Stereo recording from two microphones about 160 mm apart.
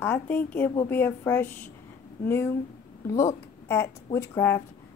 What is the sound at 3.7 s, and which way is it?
Speech, 15° left (ahead or behind).